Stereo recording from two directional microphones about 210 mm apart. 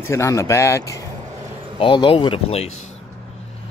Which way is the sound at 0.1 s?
15° left (ahead or behind).